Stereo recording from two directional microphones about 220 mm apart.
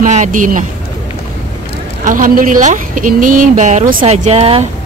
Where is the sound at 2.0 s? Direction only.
35° right (ahead or behind).